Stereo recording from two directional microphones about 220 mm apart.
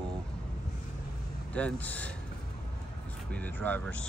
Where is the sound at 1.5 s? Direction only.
5° left (ahead or behind).